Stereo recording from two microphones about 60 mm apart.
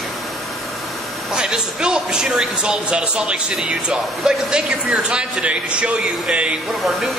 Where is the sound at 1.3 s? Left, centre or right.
Centre.